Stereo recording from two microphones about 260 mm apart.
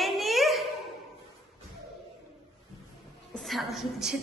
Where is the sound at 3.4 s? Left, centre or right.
Centre.